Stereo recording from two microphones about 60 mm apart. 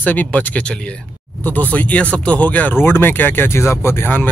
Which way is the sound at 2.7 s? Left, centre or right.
Left.